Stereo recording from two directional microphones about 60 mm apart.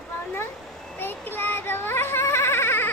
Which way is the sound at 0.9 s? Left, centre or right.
Left.